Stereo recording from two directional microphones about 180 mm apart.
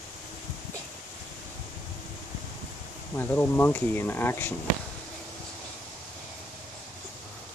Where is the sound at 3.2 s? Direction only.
10° left (ahead or behind).